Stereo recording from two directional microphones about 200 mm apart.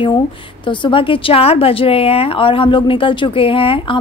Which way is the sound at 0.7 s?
25° left (ahead or behind).